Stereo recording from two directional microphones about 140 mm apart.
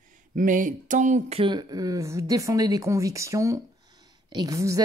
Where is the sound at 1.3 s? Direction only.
35° right (ahead or behind).